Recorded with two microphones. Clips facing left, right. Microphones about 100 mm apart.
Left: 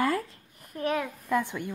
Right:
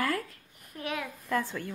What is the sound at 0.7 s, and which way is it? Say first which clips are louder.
Speech: left 7 dB; 40° left (ahead or behind).